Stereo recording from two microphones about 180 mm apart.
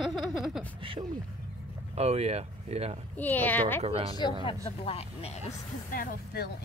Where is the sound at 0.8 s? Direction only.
30° right (ahead or behind).